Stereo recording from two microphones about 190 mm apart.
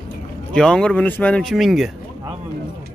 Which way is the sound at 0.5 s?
5° left (ahead or behind).